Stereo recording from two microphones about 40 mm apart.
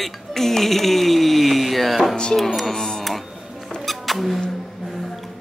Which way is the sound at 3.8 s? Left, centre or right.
Centre.